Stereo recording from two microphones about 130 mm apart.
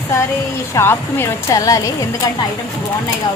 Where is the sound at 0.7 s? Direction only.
20° left (ahead or behind).